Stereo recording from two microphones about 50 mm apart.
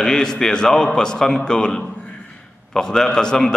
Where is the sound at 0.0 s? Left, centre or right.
Centre.